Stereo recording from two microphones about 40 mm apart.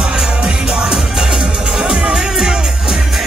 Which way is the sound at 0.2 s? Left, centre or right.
Centre.